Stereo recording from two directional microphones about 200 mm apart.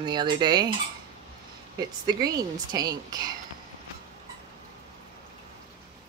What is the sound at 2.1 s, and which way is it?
Speech, 20° right (ahead or behind).